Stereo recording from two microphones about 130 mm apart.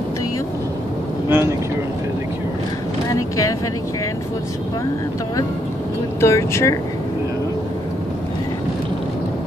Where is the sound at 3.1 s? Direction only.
25° left (ahead or behind).